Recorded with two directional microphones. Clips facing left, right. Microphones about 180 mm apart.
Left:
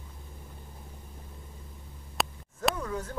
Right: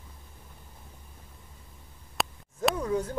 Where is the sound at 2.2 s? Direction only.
Centre (ahead or behind).